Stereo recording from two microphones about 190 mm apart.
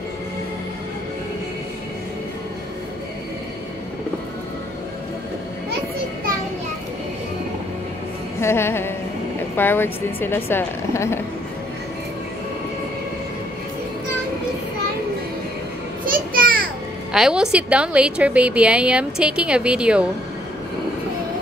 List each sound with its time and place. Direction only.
8.4 s speech: 15° left (ahead or behind)
16.1 s a sound: 50° right (ahead or behind)
17.1 s a woman's voice: 5° right (ahead or behind)